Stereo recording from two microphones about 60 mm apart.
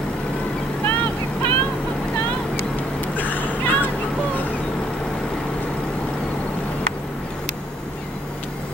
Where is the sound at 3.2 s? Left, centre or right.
Left.